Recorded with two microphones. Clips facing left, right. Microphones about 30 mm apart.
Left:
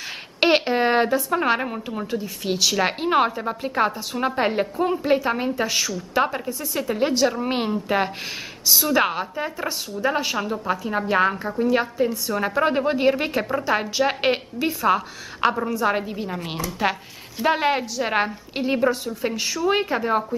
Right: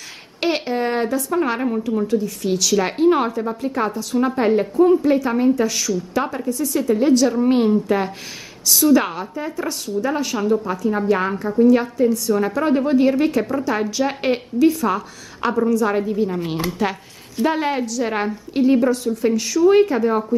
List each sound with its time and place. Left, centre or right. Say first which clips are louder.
0.4 s a woman's voice: left 2 dB; left